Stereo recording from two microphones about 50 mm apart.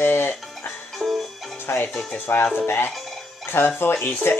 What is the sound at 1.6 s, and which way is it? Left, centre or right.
Speech, left.